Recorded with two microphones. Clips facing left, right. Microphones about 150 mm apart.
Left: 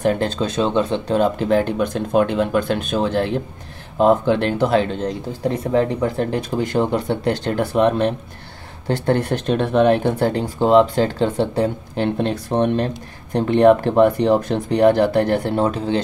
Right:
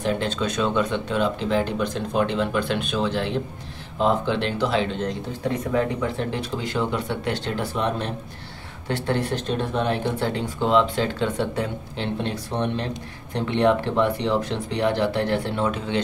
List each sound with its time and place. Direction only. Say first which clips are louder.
0.0 s speech: left 5 dB; 40° left (ahead or behind)
5.5 s speech: left 5 dB; 35° left (ahead or behind); by 8.1 s 60° left (ahead or behind)
8.8 s speech: left 6 dB; 40° left (ahead or behind)
9.3 s speech: left 7 dB; 65° left (ahead or behind); by 11.7 s 35° left (ahead or behind)
12.0 s speech: left 7 dB; 55° left (ahead or behind); by 16.0 s 35° left (ahead or behind)